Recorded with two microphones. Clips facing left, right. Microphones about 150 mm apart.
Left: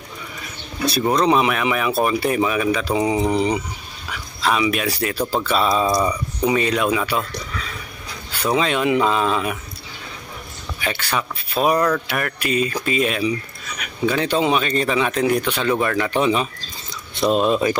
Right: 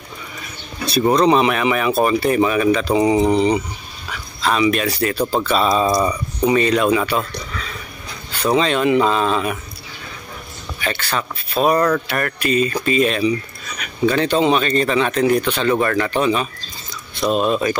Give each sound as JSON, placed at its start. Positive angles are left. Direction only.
{"t": 1.0, "sound": "speech", "side_deg": 0}
{"t": 8.4, "sound": "speech", "side_deg": 5}
{"t": 10.8, "sound": "speech", "side_deg": 10}
{"t": 16.1, "sound": "speech", "side_deg": 15}
{"t": 17.5, "sound": "speech", "side_deg": 20}